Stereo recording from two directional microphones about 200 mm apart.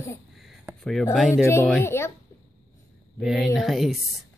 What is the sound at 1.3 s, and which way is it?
Speech, 15° left (ahead or behind).